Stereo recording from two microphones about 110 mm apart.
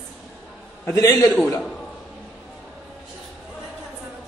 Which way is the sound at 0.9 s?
25° left (ahead or behind).